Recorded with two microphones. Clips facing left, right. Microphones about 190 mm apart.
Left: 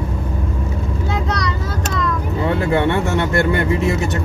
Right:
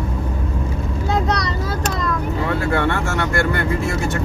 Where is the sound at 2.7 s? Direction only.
20° left (ahead or behind).